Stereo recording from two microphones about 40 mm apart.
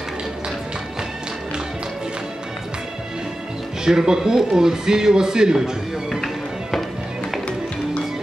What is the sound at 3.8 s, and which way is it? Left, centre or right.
A man's voice, centre.